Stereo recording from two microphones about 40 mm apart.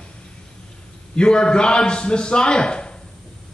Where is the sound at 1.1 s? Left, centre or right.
Left.